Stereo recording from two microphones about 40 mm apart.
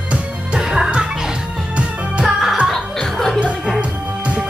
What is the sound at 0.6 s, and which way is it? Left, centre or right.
Music, centre.